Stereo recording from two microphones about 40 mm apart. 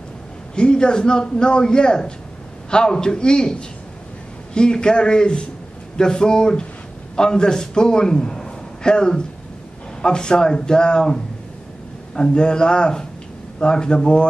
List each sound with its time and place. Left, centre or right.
0.6 s a man's voice: left
12.2 s a man's voice: left